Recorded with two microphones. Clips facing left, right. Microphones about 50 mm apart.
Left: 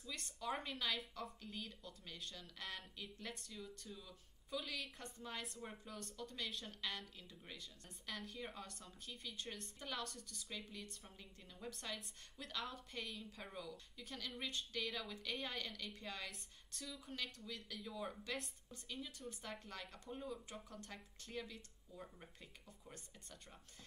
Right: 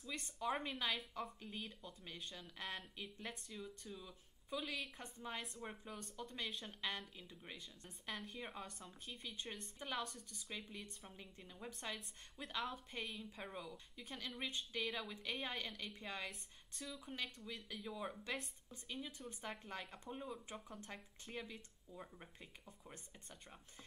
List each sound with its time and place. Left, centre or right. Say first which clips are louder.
0.1 s a woman's voice: right 3 dB; right